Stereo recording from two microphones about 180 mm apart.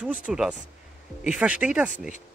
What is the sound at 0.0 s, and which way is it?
Speech, 5° right (ahead or behind).